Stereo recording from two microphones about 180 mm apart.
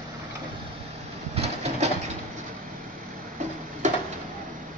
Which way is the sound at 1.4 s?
35° right (ahead or behind).